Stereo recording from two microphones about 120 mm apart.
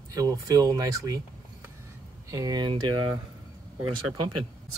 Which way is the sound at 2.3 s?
30° right (ahead or behind).